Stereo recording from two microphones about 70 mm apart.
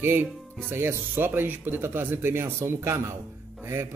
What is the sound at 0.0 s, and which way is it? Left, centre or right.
Speech, right.